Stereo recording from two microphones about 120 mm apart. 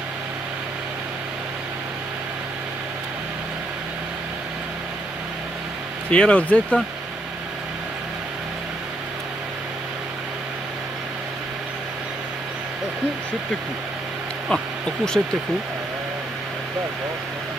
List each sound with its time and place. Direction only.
6.0 s speech: 10° left (ahead or behind)
14.5 s speech: 5° left (ahead or behind)